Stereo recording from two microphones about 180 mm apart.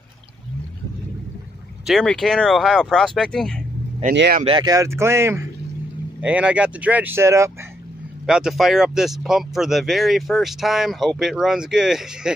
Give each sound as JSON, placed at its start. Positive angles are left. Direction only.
{"t": 1.9, "sound": "speech", "side_deg": 0}
{"t": 4.1, "sound": "speech", "side_deg": -75}
{"t": 4.5, "sound": "speech", "side_deg": -25}
{"t": 8.3, "sound": "speech", "side_deg": -5}